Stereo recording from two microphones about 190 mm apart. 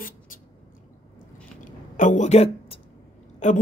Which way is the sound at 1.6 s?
40° left (ahead or behind).